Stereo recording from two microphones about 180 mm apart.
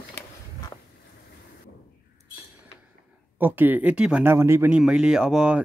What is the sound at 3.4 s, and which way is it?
Speech, 10° right (ahead or behind).